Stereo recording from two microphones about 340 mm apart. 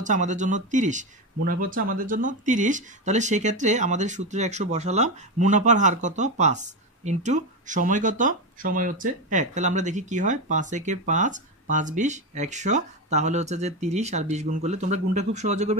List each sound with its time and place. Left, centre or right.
0.0 s speech: right